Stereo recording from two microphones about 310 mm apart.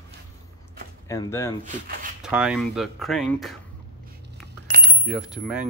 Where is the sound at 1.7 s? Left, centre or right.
Right.